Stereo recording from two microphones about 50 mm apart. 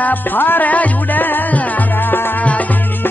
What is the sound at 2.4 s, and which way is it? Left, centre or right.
Music, left.